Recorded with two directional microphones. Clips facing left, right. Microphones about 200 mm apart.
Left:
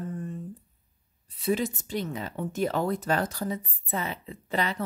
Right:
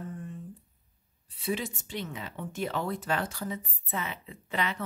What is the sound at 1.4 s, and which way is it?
Speech, 40° left (ahead or behind).